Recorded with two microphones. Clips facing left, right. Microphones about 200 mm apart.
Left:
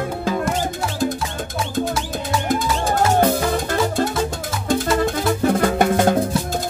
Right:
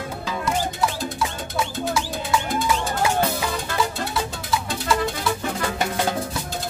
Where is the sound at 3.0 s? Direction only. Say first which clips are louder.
Left 9 dB; 50° left (ahead or behind).